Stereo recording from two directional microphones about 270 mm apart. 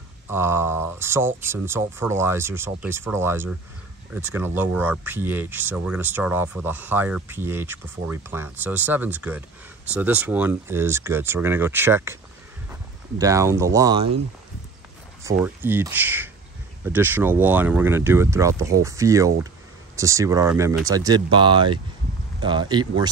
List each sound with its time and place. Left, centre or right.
0.3 s speech: centre
13.2 s speech: centre
15.2 s speech: centre